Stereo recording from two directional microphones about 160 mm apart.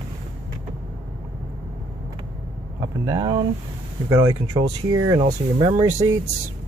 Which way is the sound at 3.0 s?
25° right (ahead or behind).